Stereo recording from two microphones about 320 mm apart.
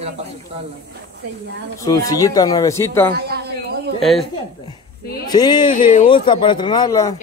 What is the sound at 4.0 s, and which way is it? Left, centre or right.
Speech, centre.